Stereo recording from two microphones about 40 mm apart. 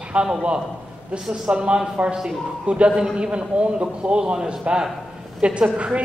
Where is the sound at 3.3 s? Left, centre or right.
Right.